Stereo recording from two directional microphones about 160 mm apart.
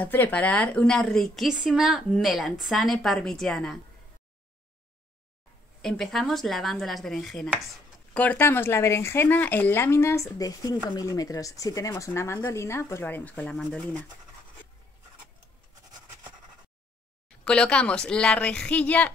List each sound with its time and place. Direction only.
0.0 s a woman's voice: 10° left (ahead or behind)
5.8 s a woman's voice: centre (ahead or behind)
17.5 s speech: 5° left (ahead or behind)